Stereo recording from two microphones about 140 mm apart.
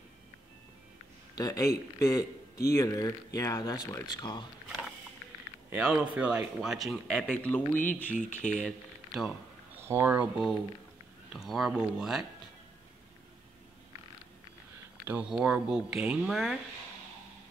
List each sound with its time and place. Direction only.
1.3 s a man's voice: 25° left (ahead or behind)
5.7 s speech: 5° right (ahead or behind); by 7.6 s 10° left (ahead or behind)
7.7 s speech: 70° left (ahead or behind)
8.5 s speech: centre (ahead or behind)
9.8 s speech: 15° right (ahead or behind)
15.0 s speech: 10° right (ahead or behind)